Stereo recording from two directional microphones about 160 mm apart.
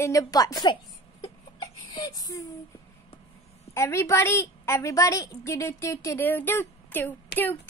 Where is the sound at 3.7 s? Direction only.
15° left (ahead or behind).